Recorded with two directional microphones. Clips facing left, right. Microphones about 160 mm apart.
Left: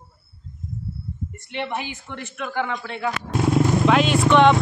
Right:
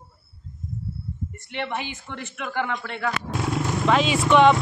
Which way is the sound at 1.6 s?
10° left (ahead or behind).